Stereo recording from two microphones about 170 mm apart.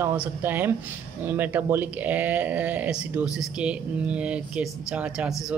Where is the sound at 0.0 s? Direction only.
10° right (ahead or behind).